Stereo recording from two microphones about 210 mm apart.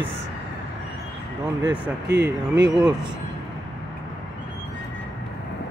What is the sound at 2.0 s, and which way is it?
Speech, 50° right (ahead or behind).